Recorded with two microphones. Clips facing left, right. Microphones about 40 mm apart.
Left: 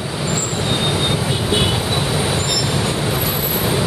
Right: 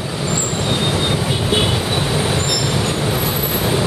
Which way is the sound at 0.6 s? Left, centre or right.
Centre.